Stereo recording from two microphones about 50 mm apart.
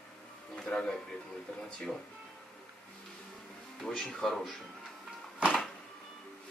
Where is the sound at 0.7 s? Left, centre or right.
Centre.